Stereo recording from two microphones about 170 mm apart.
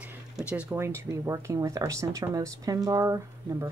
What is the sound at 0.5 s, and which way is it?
Speech, 10° right (ahead or behind).